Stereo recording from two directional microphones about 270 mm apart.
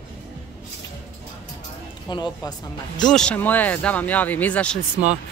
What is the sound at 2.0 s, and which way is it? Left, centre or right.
Speech, centre.